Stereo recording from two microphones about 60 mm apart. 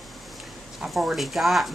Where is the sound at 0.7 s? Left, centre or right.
Centre.